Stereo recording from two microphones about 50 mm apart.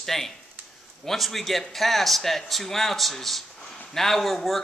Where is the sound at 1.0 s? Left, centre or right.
Centre.